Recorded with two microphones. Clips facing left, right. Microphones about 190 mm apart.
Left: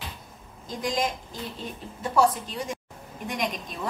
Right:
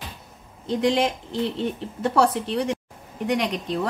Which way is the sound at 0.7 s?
70° right (ahead or behind).